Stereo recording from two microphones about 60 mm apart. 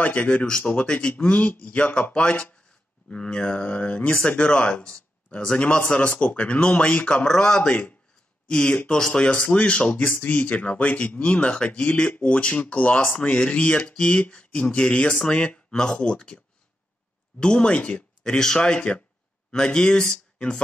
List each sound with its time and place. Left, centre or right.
0.0 s a man's voice: left
7.2 s a man's voice: centre
17.4 s a man's voice: centre